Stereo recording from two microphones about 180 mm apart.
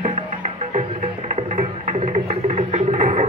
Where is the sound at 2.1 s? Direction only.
40° right (ahead or behind).